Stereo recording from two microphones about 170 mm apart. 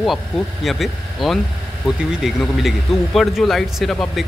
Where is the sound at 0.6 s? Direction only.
Centre (ahead or behind).